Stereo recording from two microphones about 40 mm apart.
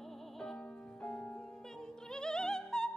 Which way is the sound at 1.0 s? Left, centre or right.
Left.